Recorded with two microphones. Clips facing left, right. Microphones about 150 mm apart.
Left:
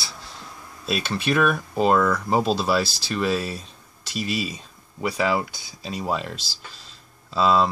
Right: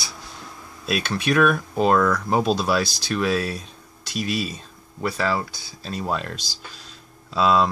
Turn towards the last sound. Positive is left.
turn(degrees=0)  # may be behind; listen again after turning